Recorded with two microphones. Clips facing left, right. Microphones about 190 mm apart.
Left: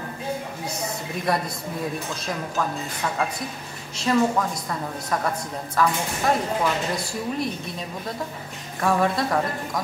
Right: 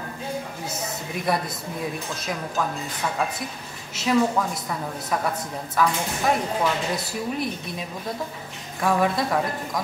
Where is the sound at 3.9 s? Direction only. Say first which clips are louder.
Even; 5° right (ahead or behind).